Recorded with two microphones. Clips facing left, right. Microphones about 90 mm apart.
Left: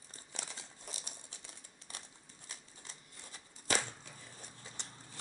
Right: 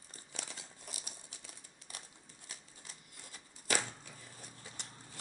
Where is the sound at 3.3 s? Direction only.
30° left (ahead or behind).